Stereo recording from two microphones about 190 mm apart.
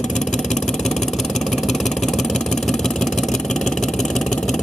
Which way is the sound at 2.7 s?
Centre (ahead or behind).